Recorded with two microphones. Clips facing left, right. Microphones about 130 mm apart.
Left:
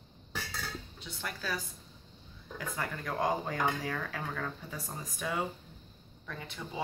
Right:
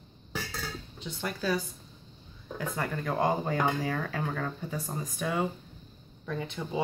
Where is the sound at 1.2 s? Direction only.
25° right (ahead or behind).